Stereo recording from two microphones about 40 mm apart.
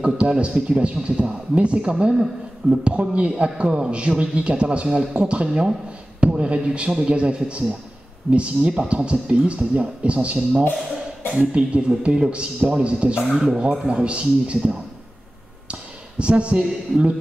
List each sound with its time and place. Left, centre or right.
0.0 s a man's voice: right
4.8 s a man's voice: centre
15.7 s a sound: right